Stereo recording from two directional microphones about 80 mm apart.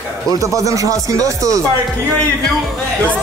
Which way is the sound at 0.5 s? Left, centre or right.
Right.